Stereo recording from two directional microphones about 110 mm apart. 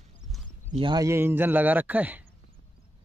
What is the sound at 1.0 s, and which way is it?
Speech, 25° right (ahead or behind).